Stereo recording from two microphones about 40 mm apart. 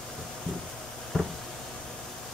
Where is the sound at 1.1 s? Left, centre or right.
Centre.